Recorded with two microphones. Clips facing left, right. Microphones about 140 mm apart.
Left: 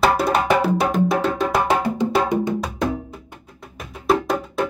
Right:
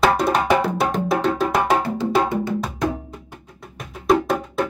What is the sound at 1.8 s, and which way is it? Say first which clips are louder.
Wood block: left 1 dB; 20° left (ahead or behind).